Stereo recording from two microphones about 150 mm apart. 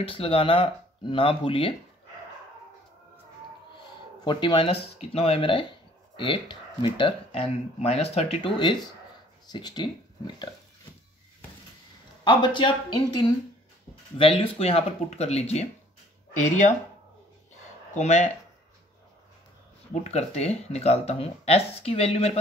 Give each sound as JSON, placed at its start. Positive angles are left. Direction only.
{"t": 0.0, "sound": "speech", "side_deg": 40}
{"t": 4.2, "sound": "speech", "side_deg": 30}
{"t": 8.4, "sound": "speech", "side_deg": 30}
{"t": 12.3, "sound": "speech", "side_deg": 30}
{"t": 17.9, "sound": "speech", "side_deg": 50}
{"t": 19.9, "sound": "speech", "side_deg": 45}